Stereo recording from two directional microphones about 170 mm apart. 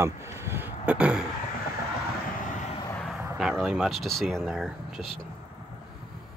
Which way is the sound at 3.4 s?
Centre (ahead or behind).